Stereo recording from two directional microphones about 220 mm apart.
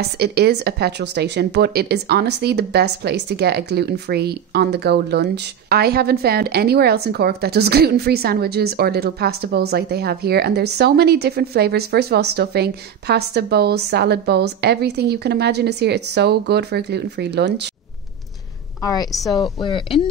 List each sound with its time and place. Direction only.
0.2 s speech: 45° right (ahead or behind)
19.1 s speech: centre (ahead or behind)
19.4 s speech: 20° left (ahead or behind)